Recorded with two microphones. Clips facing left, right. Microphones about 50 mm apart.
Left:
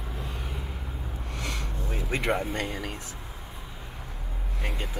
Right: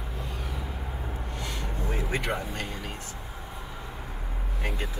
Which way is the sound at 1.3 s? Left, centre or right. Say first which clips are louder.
Left 4 dB; left.